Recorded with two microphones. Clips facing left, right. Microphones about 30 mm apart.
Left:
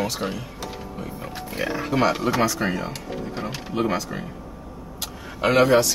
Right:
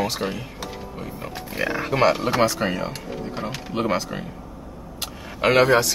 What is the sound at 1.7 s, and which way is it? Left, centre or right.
Speech, right.